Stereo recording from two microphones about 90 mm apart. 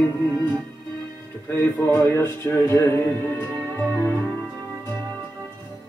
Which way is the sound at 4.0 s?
20° left (ahead or behind).